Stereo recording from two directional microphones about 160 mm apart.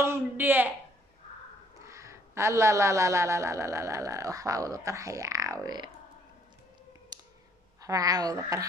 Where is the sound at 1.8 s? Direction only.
20° right (ahead or behind).